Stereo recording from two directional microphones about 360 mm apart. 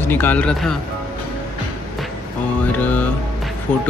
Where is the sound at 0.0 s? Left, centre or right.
Centre.